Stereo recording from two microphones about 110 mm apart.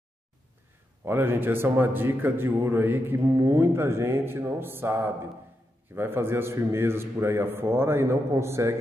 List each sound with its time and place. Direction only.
1.0 s a man's voice: 20° right (ahead or behind)